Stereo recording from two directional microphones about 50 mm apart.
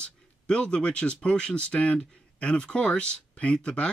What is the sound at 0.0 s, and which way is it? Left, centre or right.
Speech, centre.